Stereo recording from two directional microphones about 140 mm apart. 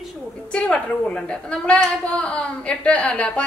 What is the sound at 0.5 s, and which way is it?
A woman's voice, 10° left (ahead or behind).